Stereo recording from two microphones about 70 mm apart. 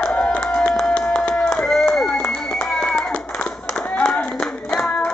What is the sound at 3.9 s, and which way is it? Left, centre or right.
Clapping, left.